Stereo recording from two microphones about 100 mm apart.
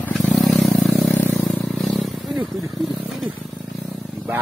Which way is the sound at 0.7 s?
Centre (ahead or behind).